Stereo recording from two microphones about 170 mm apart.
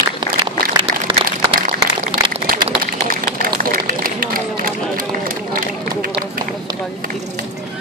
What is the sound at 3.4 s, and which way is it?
Run, 55° right (ahead or behind).